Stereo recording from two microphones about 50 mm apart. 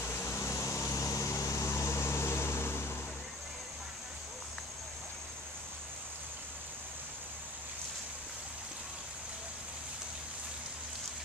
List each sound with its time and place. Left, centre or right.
0.0 s vehicle: left